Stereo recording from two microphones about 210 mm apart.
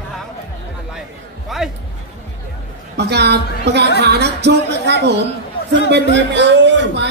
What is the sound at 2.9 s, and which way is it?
A woman's voice, 55° right (ahead or behind).